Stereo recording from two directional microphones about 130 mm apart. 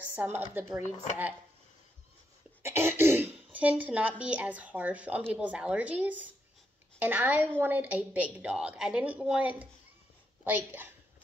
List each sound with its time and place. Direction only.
0.0 s a woman's voice: 15° right (ahead or behind)
2.6 s cough: 15° right (ahead or behind)
3.5 s a woman's voice: 10° right (ahead or behind)